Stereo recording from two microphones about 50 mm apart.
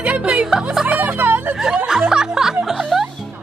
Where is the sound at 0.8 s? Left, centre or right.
Right.